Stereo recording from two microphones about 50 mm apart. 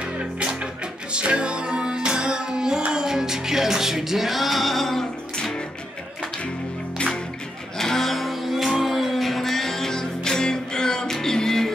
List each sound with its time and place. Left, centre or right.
0.2 s music: right; by 5.5 s centre
7.8 s music: centre